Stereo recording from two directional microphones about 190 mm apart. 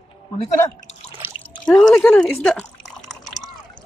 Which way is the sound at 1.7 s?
5° left (ahead or behind).